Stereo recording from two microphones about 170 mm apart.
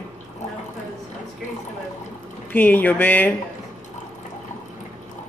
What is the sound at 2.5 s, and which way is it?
Speech, 10° left (ahead or behind).